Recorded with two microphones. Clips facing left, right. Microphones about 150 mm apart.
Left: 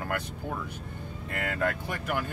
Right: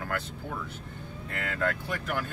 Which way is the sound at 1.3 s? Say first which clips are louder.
Left 1 dB; 10° left (ahead or behind).